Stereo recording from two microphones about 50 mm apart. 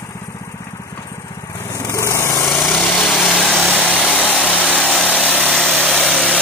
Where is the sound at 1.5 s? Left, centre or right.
Left.